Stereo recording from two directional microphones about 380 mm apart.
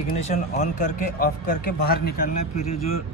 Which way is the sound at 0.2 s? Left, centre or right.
Centre.